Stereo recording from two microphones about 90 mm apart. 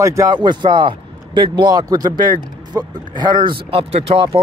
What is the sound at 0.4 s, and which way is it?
Speech, 55° right (ahead or behind).